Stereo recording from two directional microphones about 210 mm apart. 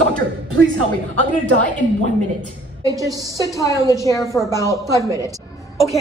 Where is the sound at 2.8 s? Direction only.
15° right (ahead or behind).